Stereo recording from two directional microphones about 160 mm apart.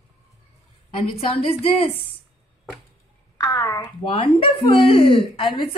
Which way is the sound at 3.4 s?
20° left (ahead or behind).